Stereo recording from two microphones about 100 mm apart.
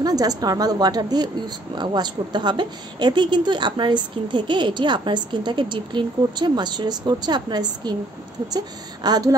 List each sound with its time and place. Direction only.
0.0 s a woman's voice: 40° right (ahead or behind)